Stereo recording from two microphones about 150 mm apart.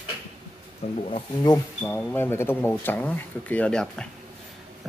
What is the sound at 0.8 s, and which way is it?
Speech, 45° left (ahead or behind).